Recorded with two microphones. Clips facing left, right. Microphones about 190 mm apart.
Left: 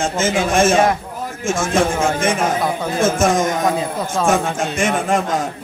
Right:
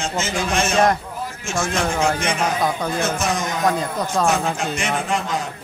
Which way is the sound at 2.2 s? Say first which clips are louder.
Left 3 dB; 50° left (ahead or behind).